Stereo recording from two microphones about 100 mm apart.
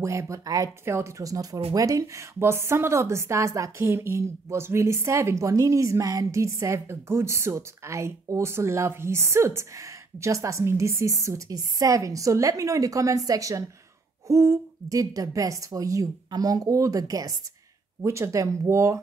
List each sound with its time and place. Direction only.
0.0 s a woman's voice: 30° right (ahead or behind)